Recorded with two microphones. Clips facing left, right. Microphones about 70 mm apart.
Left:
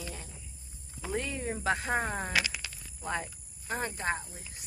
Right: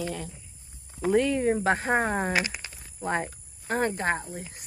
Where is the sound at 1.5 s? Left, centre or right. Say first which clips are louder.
Right 6 dB; right.